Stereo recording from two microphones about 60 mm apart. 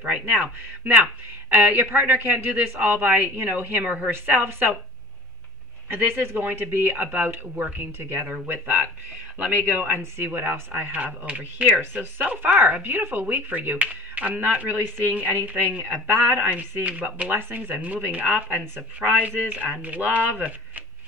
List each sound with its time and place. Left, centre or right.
0.0 s speech: right
3.8 s speech: right
4.1 s speech: right
5.9 s speech: right
17.3 s speech: right